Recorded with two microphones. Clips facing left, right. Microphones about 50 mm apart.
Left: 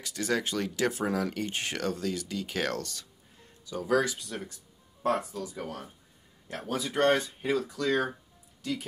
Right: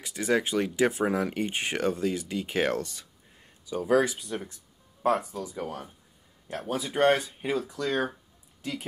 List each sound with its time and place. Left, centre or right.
0.0 s speech: centre
5.6 s speech: centre
8.6 s speech: right